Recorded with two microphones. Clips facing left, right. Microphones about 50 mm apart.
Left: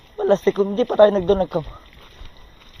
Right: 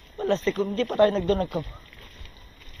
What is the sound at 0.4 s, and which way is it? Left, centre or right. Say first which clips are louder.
Speech: left 7 dB; left.